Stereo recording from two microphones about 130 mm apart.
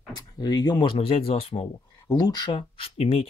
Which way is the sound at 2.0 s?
30° left (ahead or behind).